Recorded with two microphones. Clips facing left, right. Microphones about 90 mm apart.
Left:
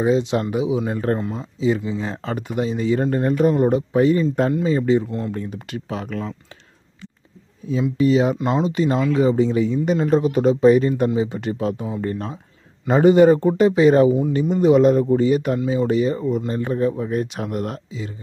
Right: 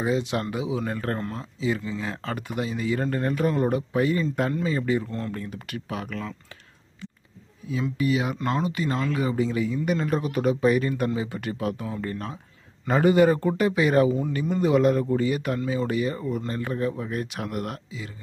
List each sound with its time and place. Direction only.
0.0 s speech: 25° left (ahead or behind)
1.6 s speech: 20° left (ahead or behind)
7.7 s speech: 30° left (ahead or behind)
8.4 s speech: 15° left (ahead or behind)